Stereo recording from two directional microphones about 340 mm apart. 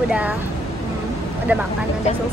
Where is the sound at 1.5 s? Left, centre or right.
Centre.